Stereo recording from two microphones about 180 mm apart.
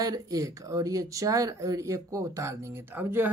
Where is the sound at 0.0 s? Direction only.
20° right (ahead or behind).